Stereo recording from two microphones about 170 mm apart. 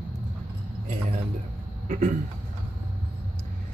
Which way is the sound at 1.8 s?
45° right (ahead or behind).